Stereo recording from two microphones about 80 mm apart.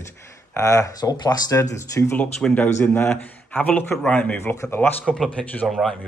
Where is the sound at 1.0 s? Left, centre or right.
Left.